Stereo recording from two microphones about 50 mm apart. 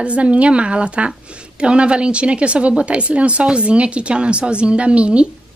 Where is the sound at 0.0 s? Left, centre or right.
Right.